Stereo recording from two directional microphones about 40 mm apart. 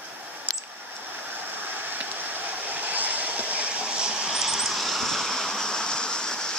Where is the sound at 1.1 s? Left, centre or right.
Right.